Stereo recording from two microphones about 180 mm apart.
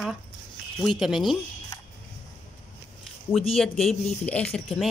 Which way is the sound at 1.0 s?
Centre (ahead or behind).